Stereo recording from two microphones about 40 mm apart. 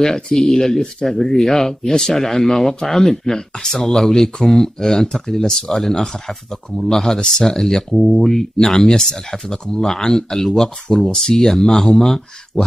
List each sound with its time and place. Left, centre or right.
0.0 s speech: centre